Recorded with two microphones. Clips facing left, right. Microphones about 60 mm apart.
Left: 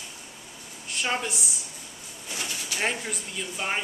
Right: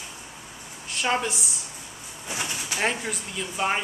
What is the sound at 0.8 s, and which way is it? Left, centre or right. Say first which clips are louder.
Speech: right 3 dB; centre.